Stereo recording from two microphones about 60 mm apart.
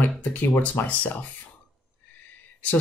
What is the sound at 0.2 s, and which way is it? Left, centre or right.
Speech, left.